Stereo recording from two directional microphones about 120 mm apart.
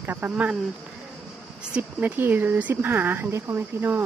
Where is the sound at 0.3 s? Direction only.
5° right (ahead or behind).